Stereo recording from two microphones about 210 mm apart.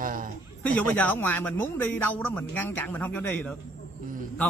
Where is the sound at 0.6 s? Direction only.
5° left (ahead or behind).